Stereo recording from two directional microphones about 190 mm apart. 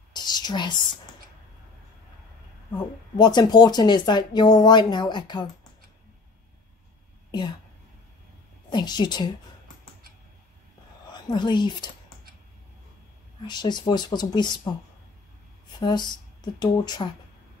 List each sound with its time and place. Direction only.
0.1 s whispering: 20° left (ahead or behind)
2.7 s speech: 20° left (ahead or behind)
7.2 s a sound: 20° left (ahead or behind)
8.6 s speech: 20° left (ahead or behind)
11.1 s a woman's voice: 25° left (ahead or behind)
13.5 s speech: 25° left (ahead or behind)
15.8 s speech: 20° left (ahead or behind)